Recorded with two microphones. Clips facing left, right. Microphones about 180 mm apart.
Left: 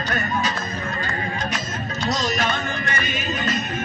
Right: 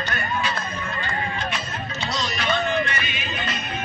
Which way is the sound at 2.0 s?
45° left (ahead or behind).